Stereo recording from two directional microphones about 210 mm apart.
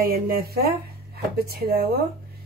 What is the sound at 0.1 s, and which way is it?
Speech, 45° right (ahead or behind).